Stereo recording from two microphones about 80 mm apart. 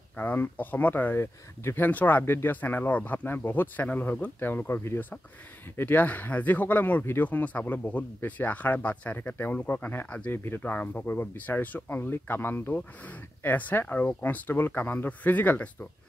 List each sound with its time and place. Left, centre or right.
0.1 s speech: left
1.9 s speech: left
10.3 s speech: left